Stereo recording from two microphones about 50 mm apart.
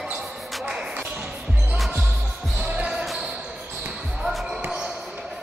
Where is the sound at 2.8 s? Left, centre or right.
Centre.